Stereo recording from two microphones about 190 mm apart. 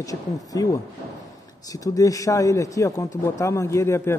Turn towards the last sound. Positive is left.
turn(degrees=15)  # may be behind; listen again after turning